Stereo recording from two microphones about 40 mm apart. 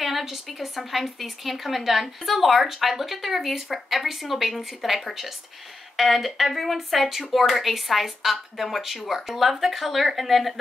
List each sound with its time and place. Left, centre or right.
0.0 s a woman's voice: centre